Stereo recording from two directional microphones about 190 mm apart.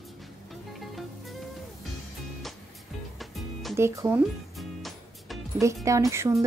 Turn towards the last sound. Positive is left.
turn(degrees=-15)  # may be behind; listen again after turning